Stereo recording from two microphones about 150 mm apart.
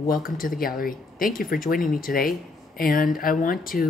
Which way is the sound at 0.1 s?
70° left (ahead or behind).